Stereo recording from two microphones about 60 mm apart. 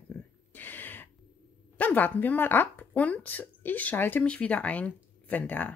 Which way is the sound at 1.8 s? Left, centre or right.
Left.